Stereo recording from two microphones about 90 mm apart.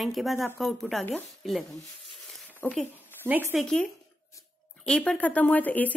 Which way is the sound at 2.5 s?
20° left (ahead or behind).